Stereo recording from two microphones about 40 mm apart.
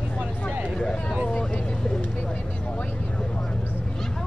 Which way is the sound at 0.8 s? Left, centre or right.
Left.